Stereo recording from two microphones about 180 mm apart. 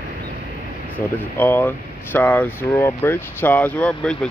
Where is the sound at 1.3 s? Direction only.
10° left (ahead or behind).